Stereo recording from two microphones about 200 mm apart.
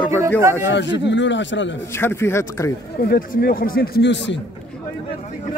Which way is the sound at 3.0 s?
50° left (ahead or behind).